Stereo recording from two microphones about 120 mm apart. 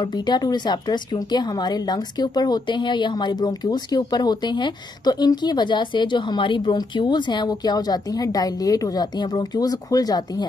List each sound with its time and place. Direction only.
0.0 s speech: 35° left (ahead or behind)